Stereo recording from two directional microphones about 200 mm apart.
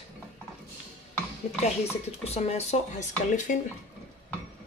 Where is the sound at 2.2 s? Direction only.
30° left (ahead or behind).